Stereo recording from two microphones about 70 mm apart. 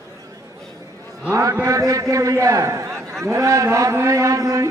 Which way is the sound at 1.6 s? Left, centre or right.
Right.